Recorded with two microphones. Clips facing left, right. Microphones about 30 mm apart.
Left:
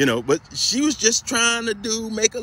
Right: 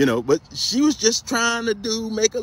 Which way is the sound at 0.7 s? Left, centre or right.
Centre.